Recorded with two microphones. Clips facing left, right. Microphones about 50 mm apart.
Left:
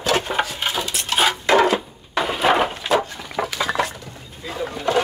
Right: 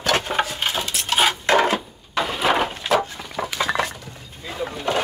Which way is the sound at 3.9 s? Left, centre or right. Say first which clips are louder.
Left 1 dB; centre.